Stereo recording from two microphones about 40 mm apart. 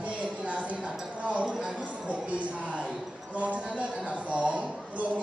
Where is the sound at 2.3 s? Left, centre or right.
Right.